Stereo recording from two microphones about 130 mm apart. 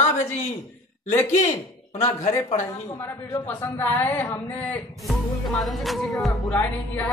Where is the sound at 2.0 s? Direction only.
60° left (ahead or behind).